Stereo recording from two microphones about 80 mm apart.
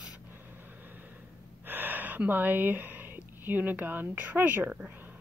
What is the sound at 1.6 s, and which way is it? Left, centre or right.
Speech, right.